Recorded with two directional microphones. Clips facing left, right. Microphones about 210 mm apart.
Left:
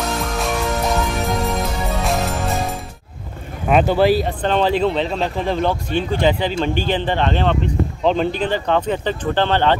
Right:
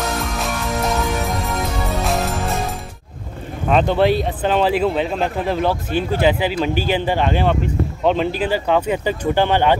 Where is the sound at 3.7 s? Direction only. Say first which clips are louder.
Left 1 dB; 5° left (ahead or behind).